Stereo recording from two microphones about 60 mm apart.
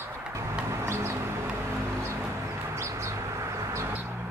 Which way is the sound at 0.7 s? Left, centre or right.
Right.